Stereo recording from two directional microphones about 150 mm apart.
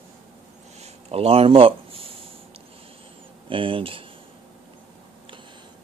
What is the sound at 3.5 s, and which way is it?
Speech, 35° right (ahead or behind).